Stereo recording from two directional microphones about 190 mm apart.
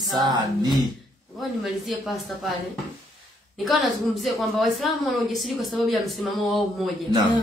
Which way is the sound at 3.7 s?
Centre (ahead or behind).